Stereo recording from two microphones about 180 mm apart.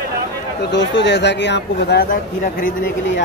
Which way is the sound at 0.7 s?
80° left.